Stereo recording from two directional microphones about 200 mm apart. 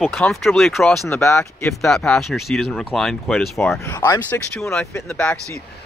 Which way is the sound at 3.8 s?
15° left (ahead or behind).